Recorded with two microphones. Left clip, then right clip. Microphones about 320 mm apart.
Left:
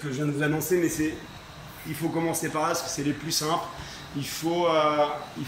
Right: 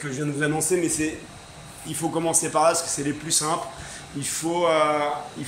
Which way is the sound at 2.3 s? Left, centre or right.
Centre.